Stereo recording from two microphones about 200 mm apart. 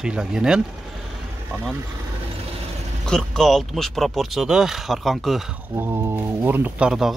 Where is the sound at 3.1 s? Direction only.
5° left (ahead or behind).